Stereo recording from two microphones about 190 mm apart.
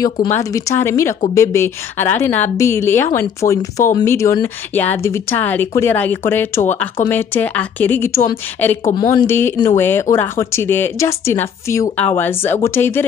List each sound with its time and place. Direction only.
0.3 s speech: 15° left (ahead or behind)